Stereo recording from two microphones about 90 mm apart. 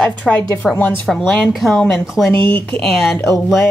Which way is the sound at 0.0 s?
10° left (ahead or behind).